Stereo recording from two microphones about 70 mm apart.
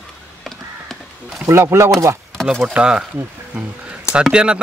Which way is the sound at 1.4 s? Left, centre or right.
Right.